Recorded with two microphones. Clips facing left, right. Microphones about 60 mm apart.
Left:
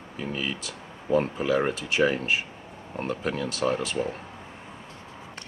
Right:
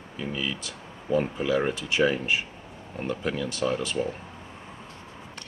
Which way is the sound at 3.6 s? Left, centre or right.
Left.